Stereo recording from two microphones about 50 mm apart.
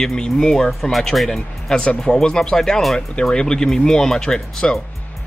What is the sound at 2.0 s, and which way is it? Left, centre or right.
Speech, centre.